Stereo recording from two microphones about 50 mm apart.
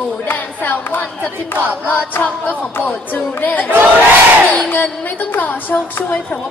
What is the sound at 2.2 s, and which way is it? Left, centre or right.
Music, left.